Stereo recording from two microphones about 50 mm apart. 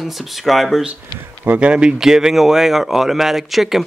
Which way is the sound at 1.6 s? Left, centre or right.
Centre.